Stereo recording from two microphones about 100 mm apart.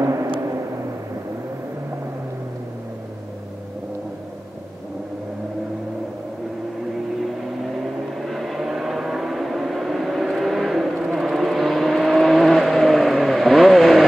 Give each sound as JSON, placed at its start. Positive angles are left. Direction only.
{"t": 0.0, "sound": "vehicle", "side_deg": -30}
{"t": 8.2, "sound": "vehicle", "side_deg": 0}